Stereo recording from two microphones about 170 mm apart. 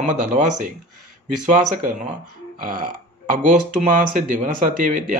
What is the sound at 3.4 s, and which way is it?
Speech, 50° right (ahead or behind).